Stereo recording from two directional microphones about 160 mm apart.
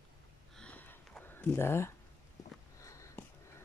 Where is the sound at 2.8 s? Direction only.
20° left (ahead or behind).